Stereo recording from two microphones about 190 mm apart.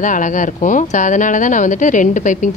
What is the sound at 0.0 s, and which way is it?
Speech, 40° left (ahead or behind).